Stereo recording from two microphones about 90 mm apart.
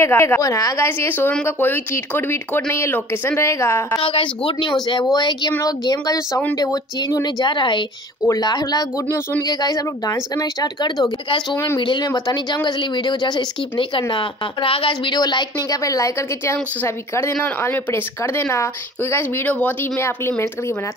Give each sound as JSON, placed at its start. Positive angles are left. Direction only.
{"t": 0.0, "sound": "speech", "side_deg": 25}
{"t": 0.4, "sound": "a woman's voice", "side_deg": 40}
{"t": 0.8, "sound": "speech", "side_deg": 25}
{"t": 4.0, "sound": "speech", "side_deg": 85}
{"t": 5.1, "sound": "speech", "side_deg": 50}
{"t": 8.3, "sound": "speech", "side_deg": 45}
{"t": 11.5, "sound": "speech", "side_deg": 30}
{"t": 11.8, "sound": "speech", "side_deg": 60}
{"t": 12.1, "sound": "speech", "side_deg": 50}
{"t": 14.1, "sound": "speech", "side_deg": 80}
{"t": 16.8, "sound": "speech", "side_deg": 25}